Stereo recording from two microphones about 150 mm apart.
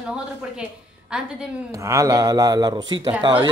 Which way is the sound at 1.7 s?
20° right (ahead or behind).